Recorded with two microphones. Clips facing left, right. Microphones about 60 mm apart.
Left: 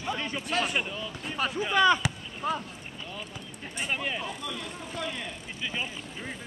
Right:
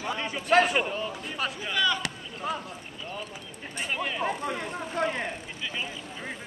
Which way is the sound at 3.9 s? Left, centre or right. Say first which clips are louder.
Right 1 dB; centre.